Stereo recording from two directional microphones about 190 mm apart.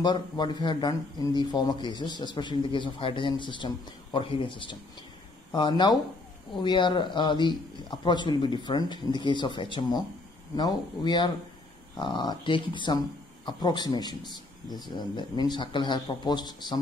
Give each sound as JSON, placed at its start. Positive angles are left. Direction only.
{"t": 0.0, "sound": "speech", "side_deg": 25}